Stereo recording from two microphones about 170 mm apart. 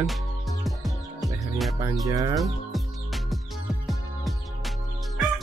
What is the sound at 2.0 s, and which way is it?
Speech, 20° right (ahead or behind).